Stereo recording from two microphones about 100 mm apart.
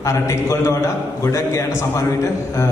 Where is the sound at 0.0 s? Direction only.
30° left (ahead or behind).